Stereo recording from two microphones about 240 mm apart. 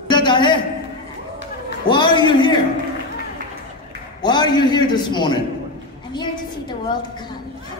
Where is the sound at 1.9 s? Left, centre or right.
Centre.